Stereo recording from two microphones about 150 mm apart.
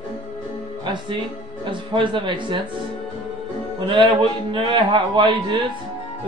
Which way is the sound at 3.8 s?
35° right (ahead or behind).